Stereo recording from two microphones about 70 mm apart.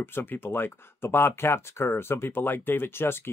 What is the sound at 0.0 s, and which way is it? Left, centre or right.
Speech, left.